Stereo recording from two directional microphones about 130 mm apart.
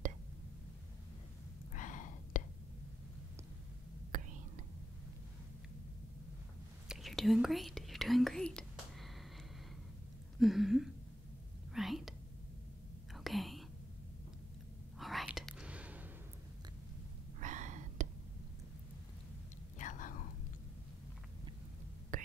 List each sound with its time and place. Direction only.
1.7 s gasp: 75° left (ahead or behind)
4.1 s whispering: 90° right
6.9 s whispering: centre (ahead or behind)
10.4 s a sound: centre (ahead or behind)
11.7 s whispering: centre (ahead or behind)
15.0 s whispering: centre (ahead or behind)
17.4 s gasp: 70° right (ahead or behind)
19.8 s whispering: 80° left
22.1 s whispering: 90° right